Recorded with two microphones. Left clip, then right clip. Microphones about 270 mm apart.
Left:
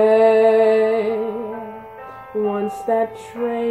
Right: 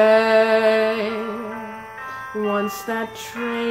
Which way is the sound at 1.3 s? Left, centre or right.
Right.